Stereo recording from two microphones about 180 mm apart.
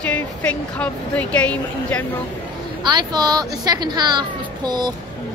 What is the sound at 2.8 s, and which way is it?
Speech, 25° right (ahead or behind).